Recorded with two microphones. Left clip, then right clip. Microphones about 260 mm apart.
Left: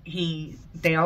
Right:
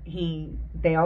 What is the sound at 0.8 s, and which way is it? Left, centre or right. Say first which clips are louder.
Speech: even; centre.